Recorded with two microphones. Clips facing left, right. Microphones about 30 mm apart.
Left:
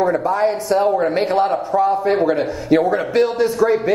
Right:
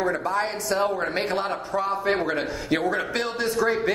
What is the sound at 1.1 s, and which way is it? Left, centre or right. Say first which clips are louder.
A man's voice: left 9 dB; centre.